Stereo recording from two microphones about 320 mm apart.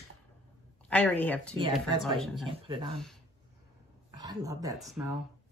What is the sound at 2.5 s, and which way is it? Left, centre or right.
Speech, centre.